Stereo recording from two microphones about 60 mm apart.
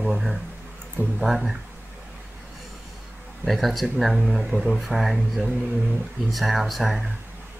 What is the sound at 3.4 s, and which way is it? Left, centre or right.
Speech, centre.